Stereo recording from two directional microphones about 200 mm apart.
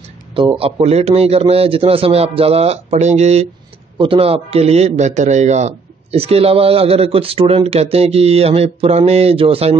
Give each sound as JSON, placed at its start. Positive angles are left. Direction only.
{"t": 0.3, "sound": "a man's voice", "side_deg": -25}